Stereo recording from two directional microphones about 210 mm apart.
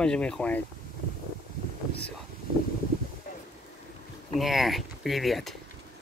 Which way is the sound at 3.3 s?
40° left (ahead or behind).